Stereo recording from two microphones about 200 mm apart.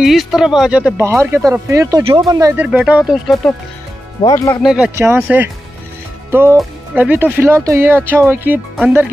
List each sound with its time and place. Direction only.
0.0 s speech: centre (ahead or behind); by 2.3 s 25° right (ahead or behind)
2.3 s speech: 10° right (ahead or behind)
4.2 s speech: 20° left (ahead or behind)
4.6 s speech: 5° right (ahead or behind)